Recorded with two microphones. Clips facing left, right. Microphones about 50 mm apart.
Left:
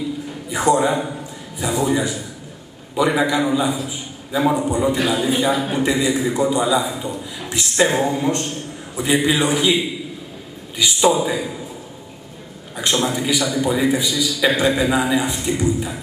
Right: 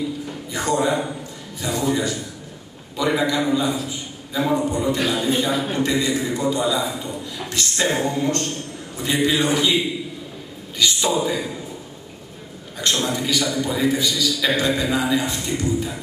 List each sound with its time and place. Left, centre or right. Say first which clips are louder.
0.5 s a man's voice: left 4 dB; centre
12.9 s a man's voice: left 3 dB; centre